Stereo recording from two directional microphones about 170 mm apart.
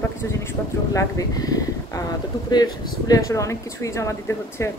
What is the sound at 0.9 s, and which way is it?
Speech, 20° left (ahead or behind).